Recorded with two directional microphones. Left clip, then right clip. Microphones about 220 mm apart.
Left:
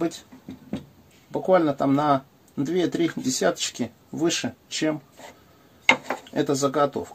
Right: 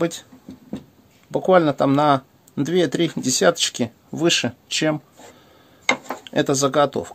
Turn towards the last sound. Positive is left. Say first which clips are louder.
# right 4 dB
turn(degrees=-45)  # may be behind; listen again after turning